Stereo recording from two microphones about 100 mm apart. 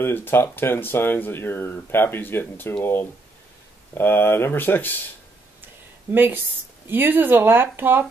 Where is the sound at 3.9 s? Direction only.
20° left (ahead or behind).